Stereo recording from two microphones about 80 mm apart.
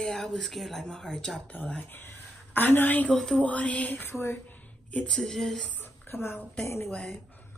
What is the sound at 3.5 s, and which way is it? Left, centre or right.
Speech, centre.